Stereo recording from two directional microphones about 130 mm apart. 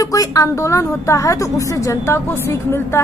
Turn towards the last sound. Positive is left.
turn(degrees=20)  # may be behind; listen again after turning